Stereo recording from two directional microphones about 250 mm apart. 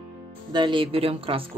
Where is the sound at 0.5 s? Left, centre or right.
Centre.